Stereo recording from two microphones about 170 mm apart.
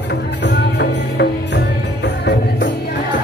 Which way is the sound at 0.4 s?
90° left.